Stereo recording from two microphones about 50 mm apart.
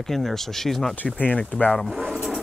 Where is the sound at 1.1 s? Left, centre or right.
Left.